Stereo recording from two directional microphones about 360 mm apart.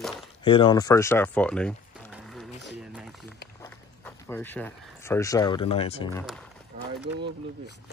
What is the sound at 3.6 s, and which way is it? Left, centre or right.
Speech, centre.